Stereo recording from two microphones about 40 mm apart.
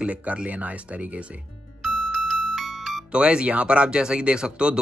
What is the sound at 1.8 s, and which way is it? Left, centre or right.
Music, centre.